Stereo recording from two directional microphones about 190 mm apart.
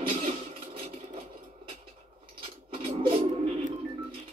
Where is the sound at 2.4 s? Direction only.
30° right (ahead or behind).